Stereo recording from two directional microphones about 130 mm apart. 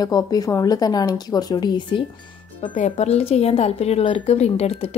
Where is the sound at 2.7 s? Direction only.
60° left (ahead or behind).